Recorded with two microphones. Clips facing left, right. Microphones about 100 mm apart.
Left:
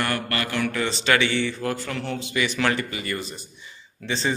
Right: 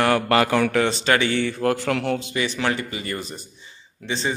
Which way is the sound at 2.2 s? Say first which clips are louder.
Even; 45° right (ahead or behind).